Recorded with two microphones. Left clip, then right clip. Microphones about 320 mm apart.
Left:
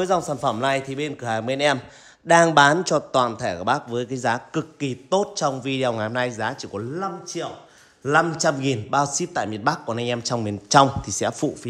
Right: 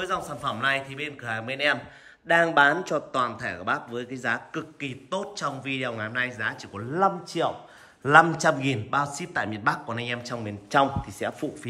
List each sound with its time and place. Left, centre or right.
0.0 s speech: centre